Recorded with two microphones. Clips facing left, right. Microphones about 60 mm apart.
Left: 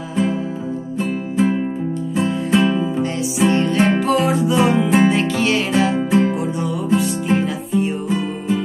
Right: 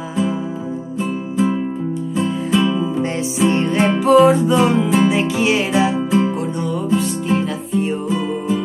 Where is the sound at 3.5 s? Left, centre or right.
Right.